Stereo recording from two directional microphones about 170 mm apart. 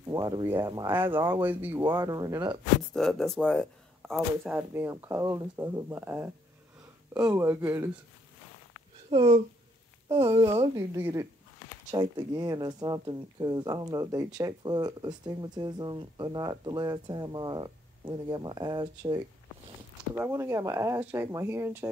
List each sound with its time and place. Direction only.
0.1 s speech: 20° right (ahead or behind)
0.9 s speech: 10° right (ahead or behind)
1.8 s speech: 20° right (ahead or behind)
2.8 s speech: centre (ahead or behind)
4.6 s speech: 15° right (ahead or behind)
9.1 s speech: 35° right (ahead or behind)
10.9 s speech: 15° right (ahead or behind)
20.2 s speech: 15° right (ahead or behind)